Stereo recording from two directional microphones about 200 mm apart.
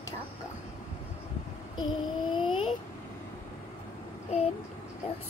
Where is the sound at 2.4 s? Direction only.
25° left (ahead or behind).